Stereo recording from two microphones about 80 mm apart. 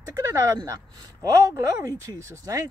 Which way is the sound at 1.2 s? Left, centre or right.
Right.